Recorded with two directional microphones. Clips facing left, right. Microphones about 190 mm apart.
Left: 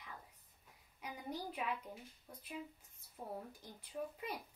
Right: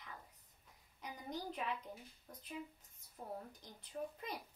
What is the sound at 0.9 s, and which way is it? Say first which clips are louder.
Speech: left 1 dB; 10° left (ahead or behind).